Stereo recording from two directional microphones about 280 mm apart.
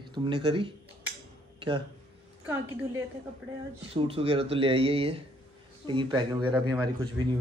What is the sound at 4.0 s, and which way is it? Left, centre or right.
Speech, right.